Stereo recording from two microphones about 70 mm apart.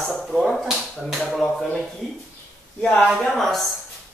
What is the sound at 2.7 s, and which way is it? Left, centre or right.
Speech, centre.